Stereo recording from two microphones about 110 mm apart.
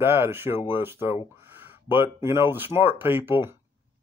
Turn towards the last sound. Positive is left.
turn(degrees=-20)  # may be behind; listen again after turning